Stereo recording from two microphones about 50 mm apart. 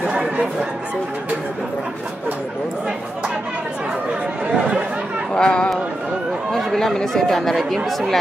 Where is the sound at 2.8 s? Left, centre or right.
Centre.